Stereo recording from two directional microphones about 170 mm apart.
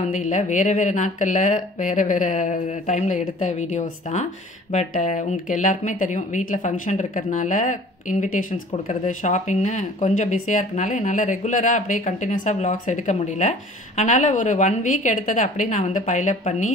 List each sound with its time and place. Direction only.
0.1 s a woman's voice: 45° left (ahead or behind)